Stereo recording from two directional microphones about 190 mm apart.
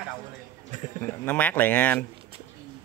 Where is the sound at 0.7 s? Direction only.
40° right (ahead or behind).